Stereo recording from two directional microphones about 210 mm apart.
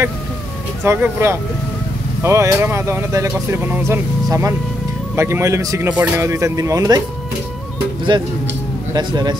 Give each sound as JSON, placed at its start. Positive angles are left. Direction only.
{"t": 0.8, "sound": "speech", "side_deg": -10}
{"t": 8.1, "sound": "speech", "side_deg": -20}